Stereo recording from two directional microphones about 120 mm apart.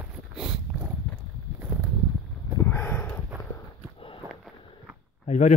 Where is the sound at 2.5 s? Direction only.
20° left (ahead or behind).